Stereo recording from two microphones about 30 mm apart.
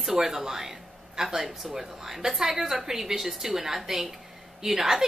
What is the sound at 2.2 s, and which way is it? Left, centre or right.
A woman's voice, centre.